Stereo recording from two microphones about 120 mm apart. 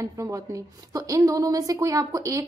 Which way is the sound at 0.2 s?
25° right (ahead or behind).